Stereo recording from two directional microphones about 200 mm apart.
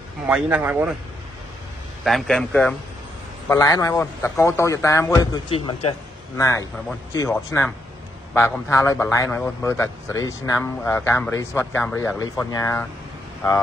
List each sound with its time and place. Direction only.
0.3 s speech: 5° right (ahead or behind)
2.0 s a man's voice: centre (ahead or behind)
3.4 s a man's voice: 15° left (ahead or behind)
5.5 s a man's voice: 30° left (ahead or behind)
6.3 s a man's voice: 15° left (ahead or behind)